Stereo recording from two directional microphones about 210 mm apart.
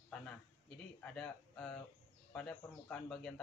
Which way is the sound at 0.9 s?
5° left (ahead or behind).